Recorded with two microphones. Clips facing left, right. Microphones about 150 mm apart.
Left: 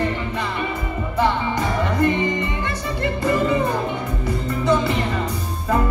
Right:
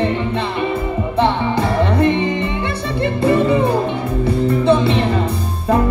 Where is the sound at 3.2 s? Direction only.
30° right (ahead or behind).